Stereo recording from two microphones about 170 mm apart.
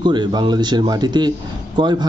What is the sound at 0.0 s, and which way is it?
A man's voice, 25° right (ahead or behind).